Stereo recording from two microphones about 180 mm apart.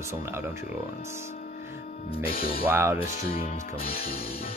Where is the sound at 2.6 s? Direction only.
15° right (ahead or behind).